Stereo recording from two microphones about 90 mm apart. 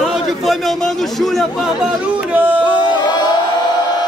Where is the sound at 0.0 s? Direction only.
Centre (ahead or behind); by 2.6 s 20° right (ahead or behind).